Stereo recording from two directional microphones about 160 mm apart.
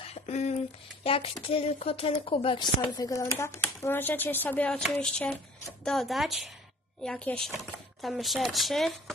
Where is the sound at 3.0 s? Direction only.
20° left (ahead or behind).